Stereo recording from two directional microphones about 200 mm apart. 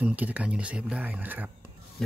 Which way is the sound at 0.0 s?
10° right (ahead or behind).